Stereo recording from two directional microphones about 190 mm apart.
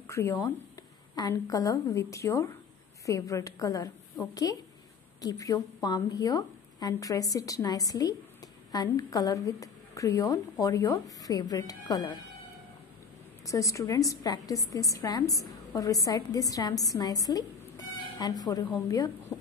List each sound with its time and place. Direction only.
0.0 s a woman's voice: 15° left (ahead or behind)
13.5 s a woman's voice: 15° left (ahead or behind)